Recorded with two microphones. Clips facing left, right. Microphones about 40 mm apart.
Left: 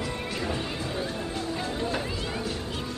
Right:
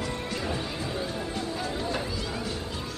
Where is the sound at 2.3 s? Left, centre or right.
Centre.